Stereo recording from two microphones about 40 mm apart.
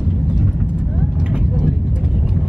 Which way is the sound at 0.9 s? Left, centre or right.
Right.